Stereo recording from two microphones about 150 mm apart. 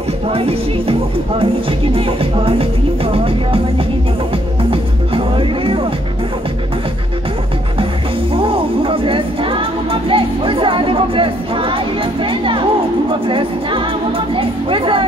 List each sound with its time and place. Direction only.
0.3 s music: 40° right (ahead or behind)
4.6 s music: 35° right (ahead or behind)
8.4 s music: 35° right (ahead or behind)